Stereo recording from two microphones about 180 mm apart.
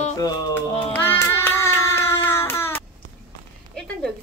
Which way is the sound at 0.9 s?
10° left (ahead or behind).